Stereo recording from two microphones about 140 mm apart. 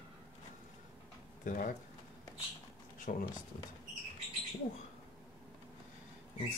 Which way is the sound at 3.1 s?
90° left.